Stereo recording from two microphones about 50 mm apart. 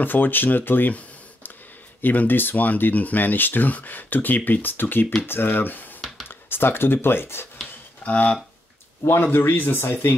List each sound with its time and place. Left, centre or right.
0.0 s speech: left
8.0 s speech: left
9.0 s speech: left